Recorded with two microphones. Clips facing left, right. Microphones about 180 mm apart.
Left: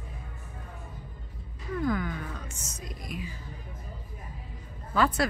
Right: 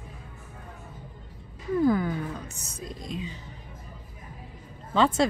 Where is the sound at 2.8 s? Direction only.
25° right (ahead or behind).